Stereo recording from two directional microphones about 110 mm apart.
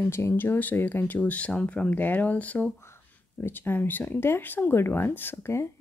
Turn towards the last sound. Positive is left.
turn(degrees=25)  # may be behind; listen again after turning